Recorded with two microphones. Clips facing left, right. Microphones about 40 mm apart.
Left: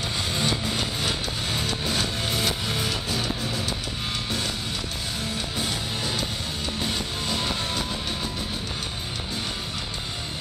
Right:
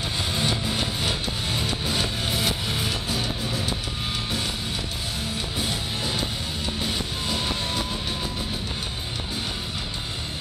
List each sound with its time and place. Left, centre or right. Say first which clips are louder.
0.3 s music: even; centre
5.6 s music: right 1 dB; centre